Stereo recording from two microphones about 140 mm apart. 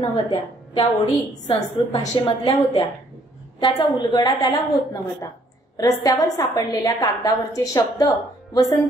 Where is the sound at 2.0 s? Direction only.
30° left (ahead or behind).